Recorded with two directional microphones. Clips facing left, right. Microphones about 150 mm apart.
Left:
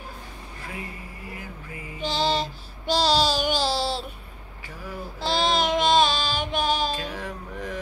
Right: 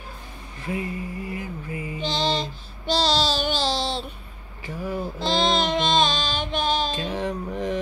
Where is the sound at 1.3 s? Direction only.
25° right (ahead or behind).